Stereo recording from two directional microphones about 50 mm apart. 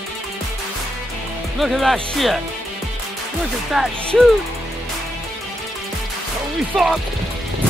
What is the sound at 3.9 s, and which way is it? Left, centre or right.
Speech, left.